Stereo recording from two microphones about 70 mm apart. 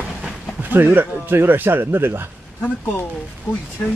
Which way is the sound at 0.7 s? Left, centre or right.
Right.